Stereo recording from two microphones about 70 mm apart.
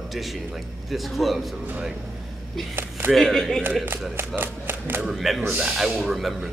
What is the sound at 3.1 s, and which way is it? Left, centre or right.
Speech, centre.